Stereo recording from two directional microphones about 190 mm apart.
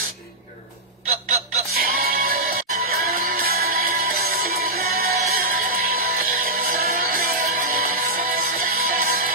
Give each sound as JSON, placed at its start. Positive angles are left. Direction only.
{"t": 1.7, "sound": "music", "side_deg": -50}